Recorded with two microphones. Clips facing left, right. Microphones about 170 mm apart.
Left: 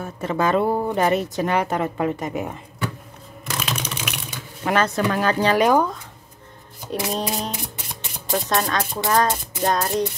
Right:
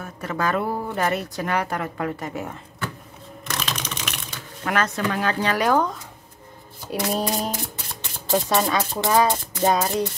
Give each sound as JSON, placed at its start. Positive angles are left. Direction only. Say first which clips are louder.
{"t": 0.0, "sound": "speech", "louder": "left 4 dB", "side_deg": 25}
{"t": 3.5, "sound": "typing", "louder": "left 2 dB", "side_deg": 10}
{"t": 4.6, "sound": "speech", "louder": "left 3 dB", "side_deg": 30}
{"t": 5.5, "sound": "speech", "louder": "left 4 dB", "side_deg": 20}
{"t": 6.9, "sound": "speech", "louder": "right 1 dB", "side_deg": -5}
{"t": 9.0, "sound": "speech", "louder": "right 1 dB", "side_deg": -15}
{"t": 9.6, "sound": "speech", "louder": "right 1 dB", "side_deg": 0}